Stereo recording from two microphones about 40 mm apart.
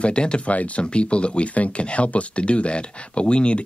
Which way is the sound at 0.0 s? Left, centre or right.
Left.